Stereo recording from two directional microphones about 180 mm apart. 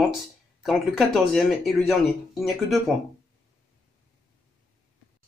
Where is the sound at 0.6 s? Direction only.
Centre (ahead or behind).